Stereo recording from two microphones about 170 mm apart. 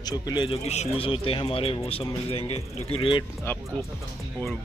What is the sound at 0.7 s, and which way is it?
Speech, 35° left (ahead or behind).